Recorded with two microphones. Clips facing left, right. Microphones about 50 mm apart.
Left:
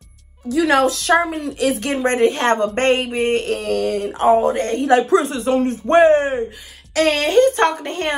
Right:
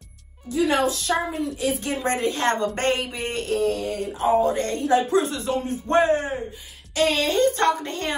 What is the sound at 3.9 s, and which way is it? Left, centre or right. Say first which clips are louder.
Speech: left 6 dB; left.